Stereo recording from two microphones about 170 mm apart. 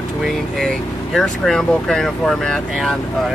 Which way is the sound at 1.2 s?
Centre (ahead or behind).